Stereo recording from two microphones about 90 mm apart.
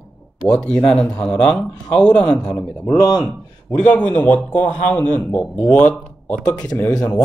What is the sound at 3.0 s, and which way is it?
Speech, 45° left (ahead or behind).